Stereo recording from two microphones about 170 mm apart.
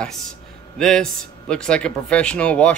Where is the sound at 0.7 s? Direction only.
5° left (ahead or behind).